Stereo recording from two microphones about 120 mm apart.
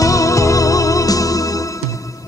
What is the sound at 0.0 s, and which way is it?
Music, 30° left (ahead or behind).